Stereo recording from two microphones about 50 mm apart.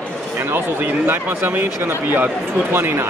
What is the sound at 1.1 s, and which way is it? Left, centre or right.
A man's voice, right.